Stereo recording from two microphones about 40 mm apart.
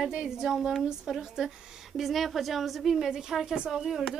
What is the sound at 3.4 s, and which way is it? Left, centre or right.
Speech, right.